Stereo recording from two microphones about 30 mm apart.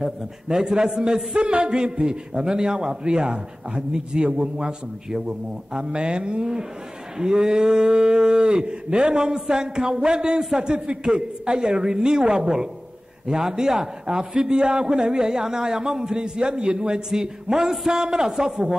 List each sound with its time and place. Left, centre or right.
0.0 s a man's voice: centre; by 17.0 s right
17.1 s a man's voice: right